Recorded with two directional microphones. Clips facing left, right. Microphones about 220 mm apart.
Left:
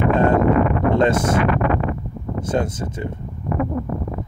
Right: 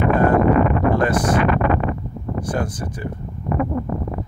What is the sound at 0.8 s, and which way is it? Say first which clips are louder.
Speech: left 1 dB; 25° left (ahead or behind).